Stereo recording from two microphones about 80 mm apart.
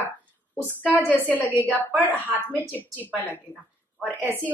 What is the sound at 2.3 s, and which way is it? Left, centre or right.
Speech, right.